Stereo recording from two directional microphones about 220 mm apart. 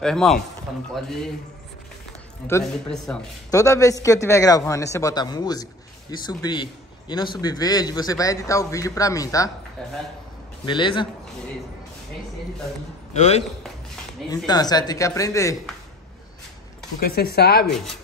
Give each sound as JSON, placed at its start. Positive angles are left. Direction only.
{"t": 0.0, "sound": "speech", "side_deg": 0}
{"t": 2.4, "sound": "speech", "side_deg": 5}
{"t": 3.4, "sound": "a man's voice", "side_deg": 15}
{"t": 10.6, "sound": "a man's voice", "side_deg": 20}
{"t": 13.1, "sound": "a man's voice", "side_deg": 30}
{"t": 14.3, "sound": "a man's voice", "side_deg": 15}
{"t": 17.0, "sound": "speech", "side_deg": 45}